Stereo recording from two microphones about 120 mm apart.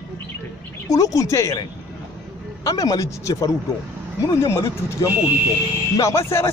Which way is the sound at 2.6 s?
30° left (ahead or behind).